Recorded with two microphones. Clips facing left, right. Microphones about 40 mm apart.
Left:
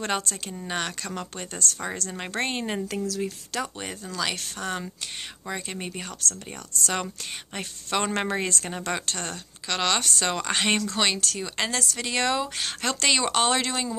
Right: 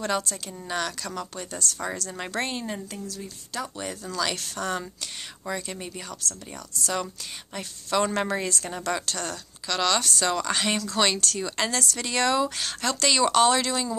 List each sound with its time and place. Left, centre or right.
0.0 s speech: left
0.7 s a woman's voice: left
2.9 s speech: left
3.8 s speech: left
5.5 s a woman's voice: left
11.0 s speech: centre